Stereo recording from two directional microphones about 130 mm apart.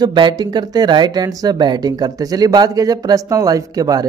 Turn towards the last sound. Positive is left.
turn(degrees=-30)  # may be behind; listen again after turning